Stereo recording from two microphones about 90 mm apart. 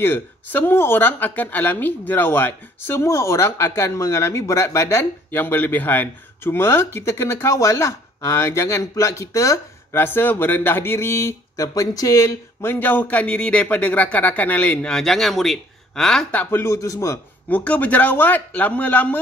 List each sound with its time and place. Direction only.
0.0 s speech: 25° left (ahead or behind)
9.9 s speech: 25° left (ahead or behind)
12.7 s speech: 20° left (ahead or behind)
16.3 s a man's voice: 20° left (ahead or behind)
17.5 s speech: 20° left (ahead or behind)